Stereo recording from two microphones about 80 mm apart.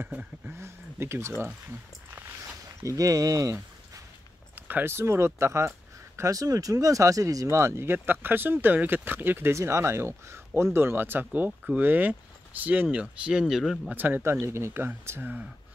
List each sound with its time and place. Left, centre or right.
0.5 s speech: right
2.8 s speech: right
4.6 s speech: right
13.2 s speech: centre
13.8 s speech: right
14.4 s speech: right